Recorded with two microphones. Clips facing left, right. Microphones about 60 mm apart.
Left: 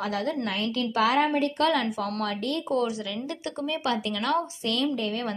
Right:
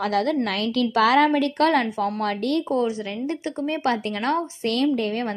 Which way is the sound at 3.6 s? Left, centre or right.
Right.